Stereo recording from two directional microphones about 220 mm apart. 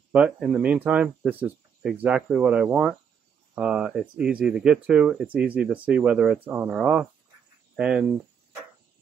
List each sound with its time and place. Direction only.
0.1 s speech: 5° right (ahead or behind)